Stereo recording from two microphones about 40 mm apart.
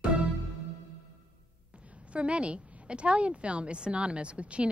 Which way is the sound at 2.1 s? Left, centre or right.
Right.